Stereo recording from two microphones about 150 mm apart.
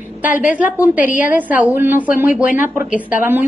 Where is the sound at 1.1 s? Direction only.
60° left (ahead or behind).